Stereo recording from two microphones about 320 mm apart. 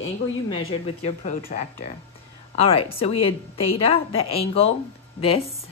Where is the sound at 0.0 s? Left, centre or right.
Left.